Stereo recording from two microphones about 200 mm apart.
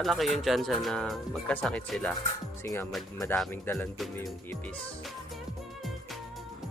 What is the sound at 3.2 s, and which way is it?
Speech, 10° left (ahead or behind).